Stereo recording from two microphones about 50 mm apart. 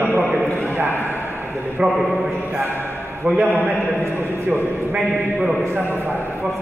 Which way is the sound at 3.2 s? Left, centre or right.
Right.